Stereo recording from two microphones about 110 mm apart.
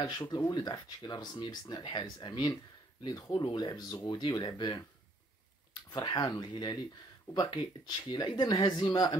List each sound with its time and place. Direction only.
0.3 s speech: 35° left (ahead or behind)
5.9 s speech: 45° left (ahead or behind)
6.2 s speech: 30° left (ahead or behind)